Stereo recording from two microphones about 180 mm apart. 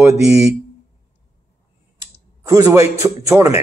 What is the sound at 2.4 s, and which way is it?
Speech, 20° right (ahead or behind).